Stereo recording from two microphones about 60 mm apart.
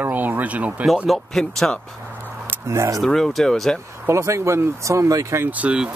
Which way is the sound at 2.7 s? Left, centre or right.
Right.